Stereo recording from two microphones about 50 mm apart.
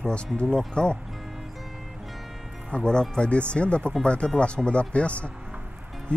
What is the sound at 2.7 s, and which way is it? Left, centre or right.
Speech, centre.